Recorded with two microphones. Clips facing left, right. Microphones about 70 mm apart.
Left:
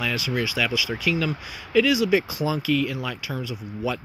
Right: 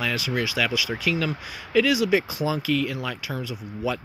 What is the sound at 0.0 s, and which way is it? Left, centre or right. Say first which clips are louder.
Speech: even; right.